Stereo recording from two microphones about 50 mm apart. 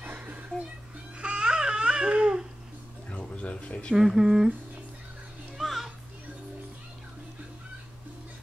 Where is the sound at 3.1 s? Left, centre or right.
Left.